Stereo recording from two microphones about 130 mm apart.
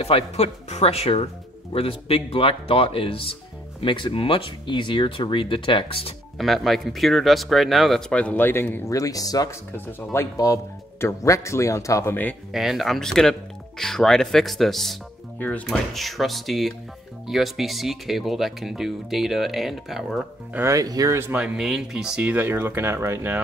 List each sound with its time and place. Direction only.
0.0 s speech: 50° left (ahead or behind)
6.3 s speech: centre (ahead or behind); by 8.9 s 15° left (ahead or behind)
8.9 s speech: 25° left (ahead or behind)
12.5 s speech: centre (ahead or behind)
20.5 s speech: 25° right (ahead or behind)
21.5 s speech: 5° right (ahead or behind)